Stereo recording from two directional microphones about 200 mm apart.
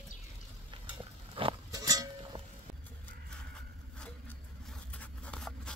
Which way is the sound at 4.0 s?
5° left (ahead or behind).